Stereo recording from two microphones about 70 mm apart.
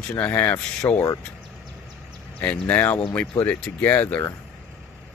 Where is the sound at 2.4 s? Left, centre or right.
Left.